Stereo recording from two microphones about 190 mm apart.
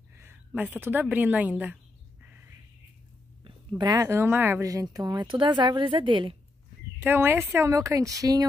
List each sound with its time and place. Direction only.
0.1 s a sound: 10° right (ahead or behind)
0.5 s a woman's voice: 10° right (ahead or behind)
2.2 s bird: 10° right (ahead or behind)
3.4 s speech: 25° right (ahead or behind)
7.0 s a woman's voice: 10° right (ahead or behind)